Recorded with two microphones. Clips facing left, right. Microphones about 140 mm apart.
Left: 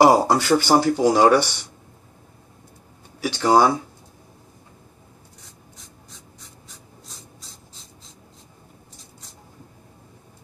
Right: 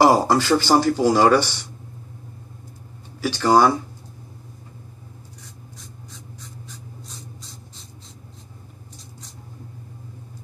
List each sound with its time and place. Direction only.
0.0 s speech: 15° left (ahead or behind)
3.2 s speech: 15° left (ahead or behind)